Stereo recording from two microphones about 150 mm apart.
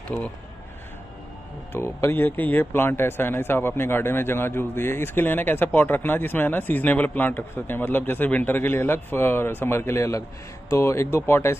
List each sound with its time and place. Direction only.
1.7 s speech: 15° left (ahead or behind)